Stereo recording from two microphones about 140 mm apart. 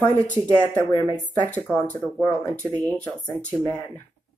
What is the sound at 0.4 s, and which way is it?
Speech, 20° right (ahead or behind).